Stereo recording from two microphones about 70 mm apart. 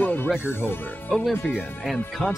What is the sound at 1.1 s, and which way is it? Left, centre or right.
Speech, centre.